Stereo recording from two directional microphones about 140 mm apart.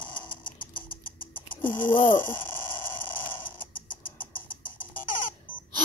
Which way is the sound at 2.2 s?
15° left (ahead or behind).